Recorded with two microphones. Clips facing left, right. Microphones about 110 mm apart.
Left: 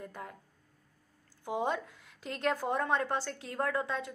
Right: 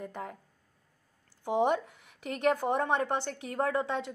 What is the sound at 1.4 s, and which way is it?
A woman's voice, 20° right (ahead or behind).